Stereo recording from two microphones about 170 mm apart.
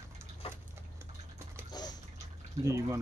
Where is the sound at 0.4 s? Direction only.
35° left (ahead or behind).